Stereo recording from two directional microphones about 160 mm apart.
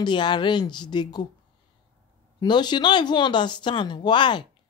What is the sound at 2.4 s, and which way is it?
Speech, 25° left (ahead or behind).